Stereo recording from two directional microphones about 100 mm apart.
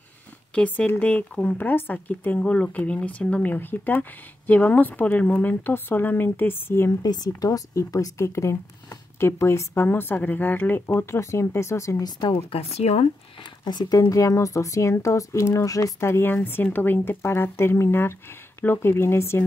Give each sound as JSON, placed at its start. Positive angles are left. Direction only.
{"t": 0.6, "sound": "speech", "side_deg": 15}
{"t": 7.0, "sound": "speech", "side_deg": 40}
{"t": 12.2, "sound": "speech", "side_deg": 60}
{"t": 12.7, "sound": "speech", "side_deg": 90}
{"t": 13.4, "sound": "speech", "side_deg": 50}
{"t": 13.9, "sound": "speech", "side_deg": 35}